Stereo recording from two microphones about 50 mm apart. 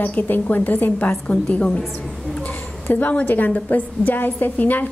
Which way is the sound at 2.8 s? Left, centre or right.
Left.